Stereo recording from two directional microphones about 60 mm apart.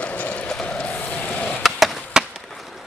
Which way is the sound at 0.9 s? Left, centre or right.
Left.